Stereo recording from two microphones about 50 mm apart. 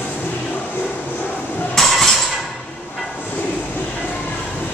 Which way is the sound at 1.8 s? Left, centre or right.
Centre.